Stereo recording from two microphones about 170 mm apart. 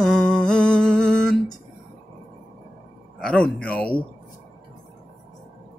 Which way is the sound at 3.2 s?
5° left (ahead or behind).